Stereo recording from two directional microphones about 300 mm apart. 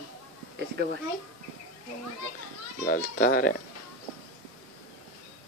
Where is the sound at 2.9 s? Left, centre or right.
Left.